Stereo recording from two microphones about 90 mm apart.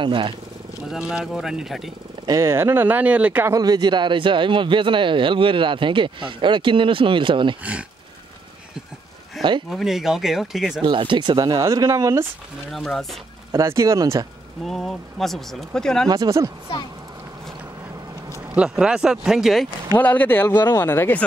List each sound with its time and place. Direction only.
0.0 s speech: 70° right (ahead or behind)
0.8 s speech: 5° right (ahead or behind)
2.2 s speech: 35° right (ahead or behind); by 3.4 s 15° right (ahead or behind)
3.4 s speech: 45° right (ahead or behind); by 7.5 s 65° right (ahead or behind)
9.4 s a sound: centre (ahead or behind)
9.7 s speech: 5° right (ahead or behind)
10.8 s speech: 65° right (ahead or behind); by 12.3 s 35° right (ahead or behind)
12.7 s speech: centre (ahead or behind)
13.5 s speech: 35° right (ahead or behind)
14.6 s speech: centre (ahead or behind)
16.1 s speech: 40° right (ahead or behind)
18.5 s speech: 10° right (ahead or behind)
20.0 s speech: 20° left (ahead or behind)